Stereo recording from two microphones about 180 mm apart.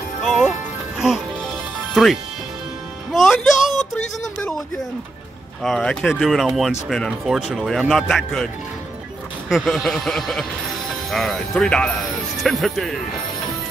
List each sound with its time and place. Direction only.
0.2 s music: centre (ahead or behind)
2.0 s speech: centre (ahead or behind)
3.1 s music: centre (ahead or behind)
3.9 s speech: 10° left (ahead or behind)
9.5 s speech: centre (ahead or behind)